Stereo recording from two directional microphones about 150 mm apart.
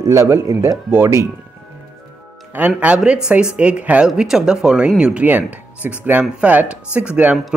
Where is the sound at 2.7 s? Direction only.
5° right (ahead or behind).